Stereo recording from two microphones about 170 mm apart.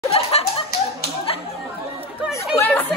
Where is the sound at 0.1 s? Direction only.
35° left (ahead or behind).